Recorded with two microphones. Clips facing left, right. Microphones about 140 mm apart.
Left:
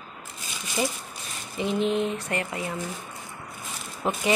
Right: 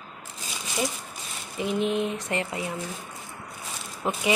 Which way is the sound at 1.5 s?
10° right (ahead or behind).